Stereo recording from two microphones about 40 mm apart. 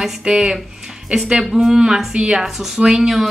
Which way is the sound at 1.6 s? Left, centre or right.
Centre.